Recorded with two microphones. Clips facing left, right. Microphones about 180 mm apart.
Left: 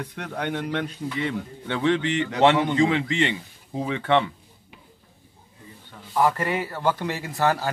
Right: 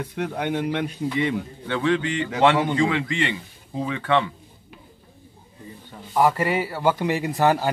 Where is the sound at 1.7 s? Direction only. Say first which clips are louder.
Even; 25° left (ahead or behind).